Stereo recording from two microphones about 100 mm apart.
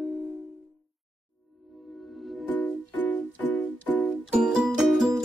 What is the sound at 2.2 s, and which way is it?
Music, centre (ahead or behind).